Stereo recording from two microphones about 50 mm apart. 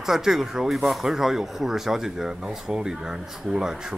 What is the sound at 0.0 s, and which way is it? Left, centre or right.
Speech, centre.